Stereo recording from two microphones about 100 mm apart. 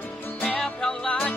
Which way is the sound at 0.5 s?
5° left (ahead or behind).